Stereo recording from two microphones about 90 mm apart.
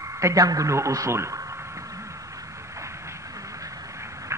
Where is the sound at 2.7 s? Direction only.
35° right (ahead or behind).